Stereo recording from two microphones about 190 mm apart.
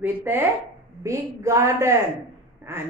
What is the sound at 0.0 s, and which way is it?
A woman's voice, 10° right (ahead or behind).